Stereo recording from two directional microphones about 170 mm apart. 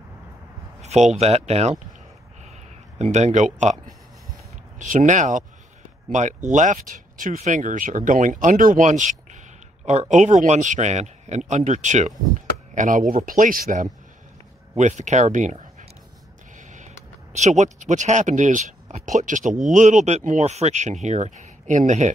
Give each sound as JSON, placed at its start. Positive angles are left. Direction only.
{"t": 0.7, "sound": "a sound", "side_deg": -40}
{"t": 1.2, "sound": "speech", "side_deg": -40}
{"t": 3.0, "sound": "speech", "side_deg": -40}
{"t": 4.7, "sound": "speech", "side_deg": -50}
{"t": 16.5, "sound": "a sound", "side_deg": -45}
{"t": 17.4, "sound": "speech", "side_deg": -45}